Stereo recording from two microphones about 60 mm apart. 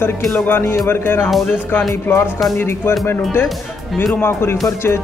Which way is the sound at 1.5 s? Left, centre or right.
Left.